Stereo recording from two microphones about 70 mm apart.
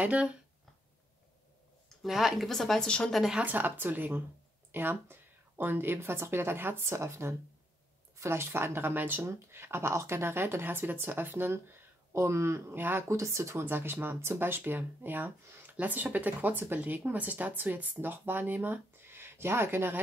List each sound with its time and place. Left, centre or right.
0.0 s speech: centre
2.0 s speech: centre
3.2 s speech: centre
3.4 s speech: right
12.1 s speech: right
13.7 s speech: right
15.4 s a sound: right
15.7 s speech: right